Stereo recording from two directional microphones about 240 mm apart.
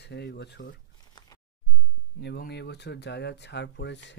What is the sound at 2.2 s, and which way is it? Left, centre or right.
Speech, left.